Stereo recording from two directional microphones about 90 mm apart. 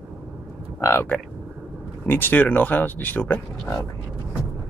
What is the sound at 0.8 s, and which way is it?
Speech, 30° left (ahead or behind).